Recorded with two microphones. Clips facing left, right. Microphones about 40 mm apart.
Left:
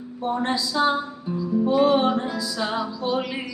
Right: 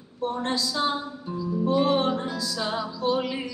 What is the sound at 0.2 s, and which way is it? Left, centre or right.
Music, centre.